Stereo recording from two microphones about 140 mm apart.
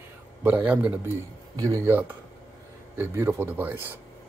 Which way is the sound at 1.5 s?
25° right (ahead or behind).